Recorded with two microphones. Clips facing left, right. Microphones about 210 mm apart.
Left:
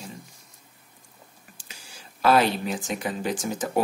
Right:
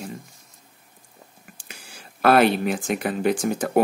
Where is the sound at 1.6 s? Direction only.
60° right (ahead or behind).